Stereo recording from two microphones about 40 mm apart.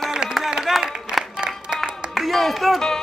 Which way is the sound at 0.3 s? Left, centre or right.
Centre.